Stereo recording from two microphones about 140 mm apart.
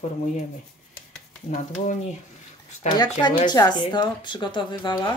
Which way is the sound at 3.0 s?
30° left (ahead or behind).